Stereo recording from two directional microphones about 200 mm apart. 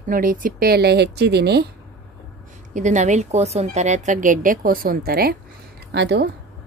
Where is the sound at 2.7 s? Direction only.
35° right (ahead or behind); by 6.3 s 55° right (ahead or behind).